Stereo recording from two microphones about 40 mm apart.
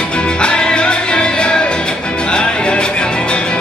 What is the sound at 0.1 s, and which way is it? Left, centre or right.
Music, left.